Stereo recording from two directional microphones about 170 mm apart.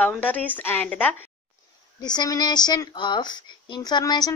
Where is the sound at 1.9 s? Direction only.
25° left (ahead or behind).